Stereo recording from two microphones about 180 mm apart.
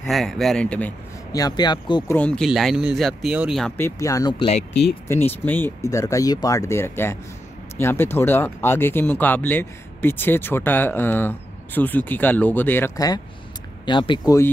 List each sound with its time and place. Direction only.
0.0 s speech: centre (ahead or behind)
1.3 s speech: 20° left (ahead or behind)
2.1 s speech: 5° left (ahead or behind)
3.7 s speech: 15° left (ahead or behind)
5.0 s speech: 10° left (ahead or behind)